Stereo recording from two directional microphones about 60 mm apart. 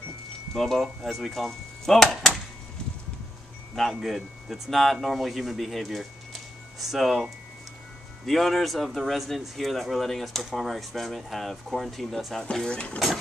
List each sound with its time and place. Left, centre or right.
0.6 s speech: centre
4.0 s speech: centre
12.5 s speech: centre